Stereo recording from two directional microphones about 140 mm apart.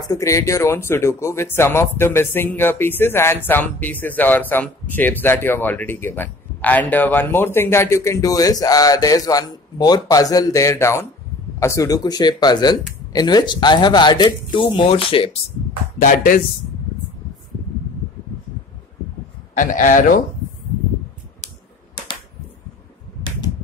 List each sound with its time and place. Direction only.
0.1 s speech: 20° left (ahead or behind); by 15.3 s 40° left (ahead or behind)
16.0 s a man's voice: 75° left (ahead or behind)
19.5 s a man's voice: 70° left (ahead or behind)